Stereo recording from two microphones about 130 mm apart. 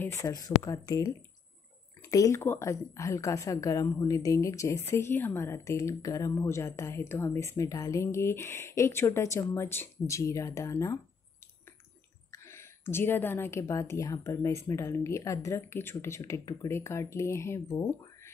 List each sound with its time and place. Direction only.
0.0 s a woman's voice: 20° left (ahead or behind)
12.3 s a woman's voice: 20° left (ahead or behind)